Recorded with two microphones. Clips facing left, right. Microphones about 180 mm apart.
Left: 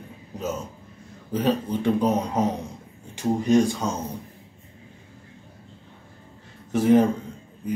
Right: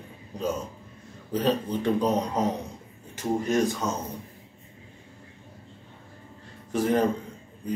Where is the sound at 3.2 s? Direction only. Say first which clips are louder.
Left 5 dB; 15° left (ahead or behind).